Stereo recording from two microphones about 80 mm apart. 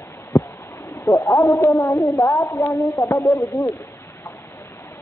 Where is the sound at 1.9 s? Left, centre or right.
Left.